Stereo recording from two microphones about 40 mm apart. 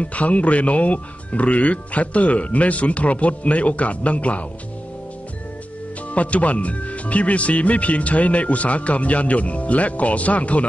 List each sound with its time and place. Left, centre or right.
0.0 s speech: left
6.1 s speech: left